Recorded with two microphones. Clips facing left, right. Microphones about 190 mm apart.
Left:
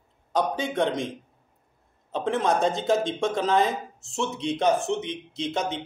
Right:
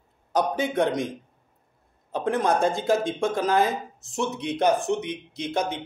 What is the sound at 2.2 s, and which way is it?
A man's voice, centre (ahead or behind).